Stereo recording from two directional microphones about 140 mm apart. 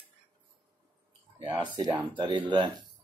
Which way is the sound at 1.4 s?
35° right (ahead or behind).